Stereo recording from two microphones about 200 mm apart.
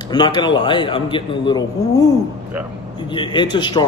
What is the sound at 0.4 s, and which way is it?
A man's voice, 25° left (ahead or behind).